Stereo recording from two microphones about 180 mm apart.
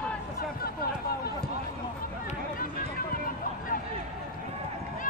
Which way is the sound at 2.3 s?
50° left (ahead or behind).